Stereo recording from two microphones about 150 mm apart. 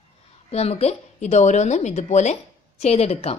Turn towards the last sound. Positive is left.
turn(degrees=45)  # may be behind; listen again after turning